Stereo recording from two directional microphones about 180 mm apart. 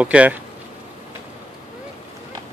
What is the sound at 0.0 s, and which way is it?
Speech, 5° right (ahead or behind).